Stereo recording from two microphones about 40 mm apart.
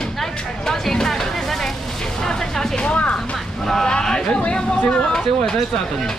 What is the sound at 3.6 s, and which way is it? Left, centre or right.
Speech, centre.